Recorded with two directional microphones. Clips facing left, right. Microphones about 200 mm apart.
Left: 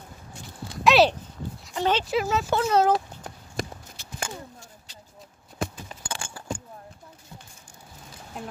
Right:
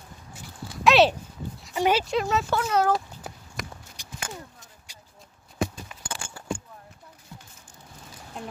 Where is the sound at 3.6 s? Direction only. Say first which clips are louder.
Left 6 dB; 30° left (ahead or behind).